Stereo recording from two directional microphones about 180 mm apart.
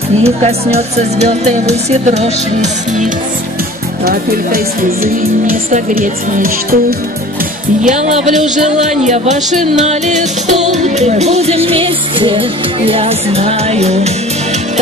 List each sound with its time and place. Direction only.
0.2 s music: 35° right (ahead or behind)
4.0 s speech: 55° right (ahead or behind)
7.8 s music: 40° right (ahead or behind)